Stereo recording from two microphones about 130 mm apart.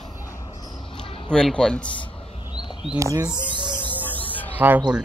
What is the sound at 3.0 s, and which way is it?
Speech, 25° right (ahead or behind).